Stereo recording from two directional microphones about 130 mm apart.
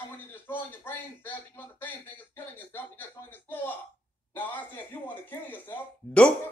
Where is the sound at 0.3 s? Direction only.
15° left (ahead or behind).